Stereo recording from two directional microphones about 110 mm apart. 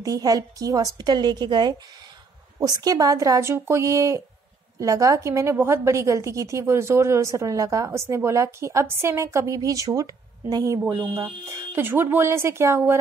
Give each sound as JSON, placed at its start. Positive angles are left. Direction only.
{"t": 0.0, "sound": "a woman's voice", "side_deg": -35}